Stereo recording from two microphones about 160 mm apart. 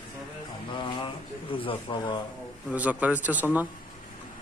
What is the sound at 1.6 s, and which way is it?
Speech, 30° left (ahead or behind).